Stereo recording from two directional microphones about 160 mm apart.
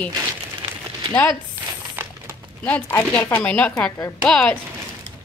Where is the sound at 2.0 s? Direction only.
15° right (ahead or behind).